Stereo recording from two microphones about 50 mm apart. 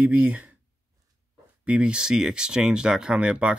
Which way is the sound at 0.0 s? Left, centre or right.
Right.